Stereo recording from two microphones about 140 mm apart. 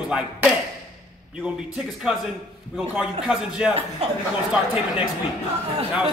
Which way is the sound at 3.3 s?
5° right (ahead or behind).